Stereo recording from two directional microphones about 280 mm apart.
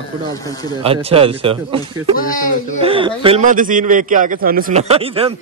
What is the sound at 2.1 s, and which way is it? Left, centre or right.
Speech, left.